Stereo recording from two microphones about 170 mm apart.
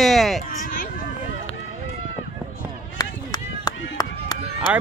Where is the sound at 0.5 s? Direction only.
55° left (ahead or behind).